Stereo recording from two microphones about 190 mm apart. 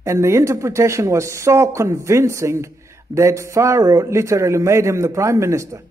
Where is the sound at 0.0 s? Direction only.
15° right (ahead or behind).